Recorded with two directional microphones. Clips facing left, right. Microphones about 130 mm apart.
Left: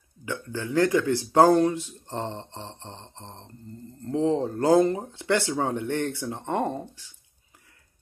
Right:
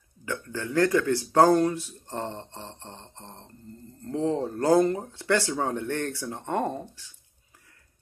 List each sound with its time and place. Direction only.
0.2 s speech: 20° left (ahead or behind)